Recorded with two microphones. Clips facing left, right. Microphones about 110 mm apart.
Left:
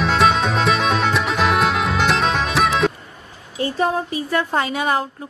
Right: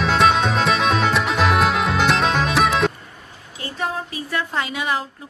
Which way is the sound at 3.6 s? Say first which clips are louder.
Left 6 dB; 30° left (ahead or behind).